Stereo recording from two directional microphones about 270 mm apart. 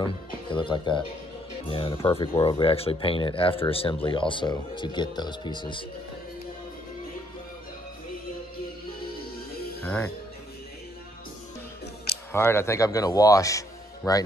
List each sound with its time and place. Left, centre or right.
0.0 s speech: centre
9.8 s speech: centre
12.3 s speech: centre